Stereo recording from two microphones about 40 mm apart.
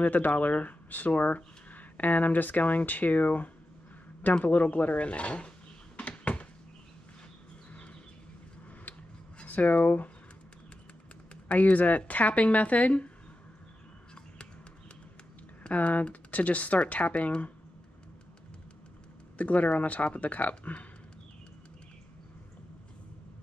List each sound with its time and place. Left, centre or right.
0.0 s speech: left
4.5 s speech: left
5.9 s a sound: left
9.4 s speech: left
11.4 s speech: left
15.6 s speech: left
19.3 s speech: left